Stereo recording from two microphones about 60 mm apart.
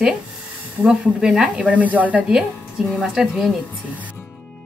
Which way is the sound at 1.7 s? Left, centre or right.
Right.